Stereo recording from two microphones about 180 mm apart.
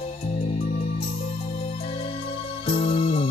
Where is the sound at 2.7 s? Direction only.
35° left (ahead or behind).